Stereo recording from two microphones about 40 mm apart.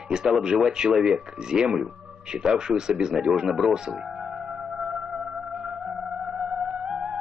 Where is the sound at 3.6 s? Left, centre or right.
Centre.